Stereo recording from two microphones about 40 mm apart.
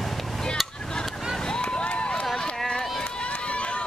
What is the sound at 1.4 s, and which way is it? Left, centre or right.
Run, left.